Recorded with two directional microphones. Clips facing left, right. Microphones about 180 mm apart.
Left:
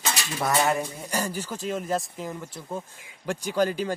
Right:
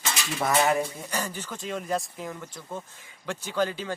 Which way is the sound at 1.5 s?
Centre (ahead or behind).